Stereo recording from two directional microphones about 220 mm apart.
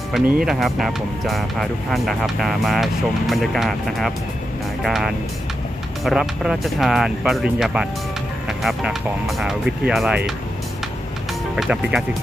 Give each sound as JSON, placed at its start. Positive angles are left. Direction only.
{"t": 0.1, "sound": "speech", "side_deg": 0}
{"t": 11.5, "sound": "speech", "side_deg": 0}